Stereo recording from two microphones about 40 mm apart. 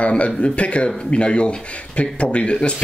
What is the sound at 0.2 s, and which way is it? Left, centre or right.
Speech, left.